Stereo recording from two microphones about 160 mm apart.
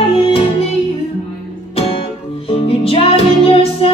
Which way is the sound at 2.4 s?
35° left (ahead or behind).